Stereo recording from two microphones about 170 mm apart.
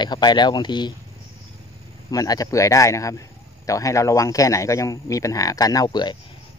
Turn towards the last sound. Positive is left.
turn(degrees=25)  # may be behind; listen again after turning